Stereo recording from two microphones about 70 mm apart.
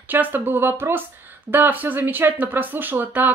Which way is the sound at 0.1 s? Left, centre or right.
Right.